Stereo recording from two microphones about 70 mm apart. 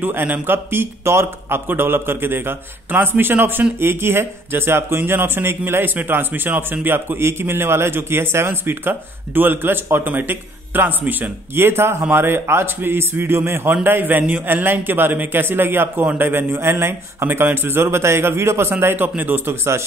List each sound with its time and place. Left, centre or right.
0.0 s a man's voice: right